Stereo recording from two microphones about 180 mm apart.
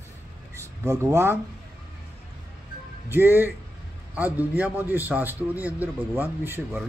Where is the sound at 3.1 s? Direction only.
10° right (ahead or behind).